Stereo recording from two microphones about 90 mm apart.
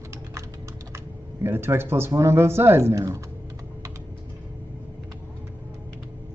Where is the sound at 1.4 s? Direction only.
25° right (ahead or behind).